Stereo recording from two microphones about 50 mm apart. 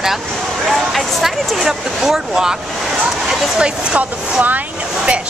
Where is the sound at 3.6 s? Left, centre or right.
Centre.